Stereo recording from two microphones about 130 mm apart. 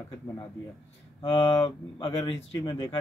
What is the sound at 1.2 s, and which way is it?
Speech, 40° left (ahead or behind).